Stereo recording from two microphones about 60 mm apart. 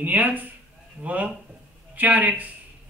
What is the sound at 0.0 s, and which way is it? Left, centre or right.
A woman's voice, right.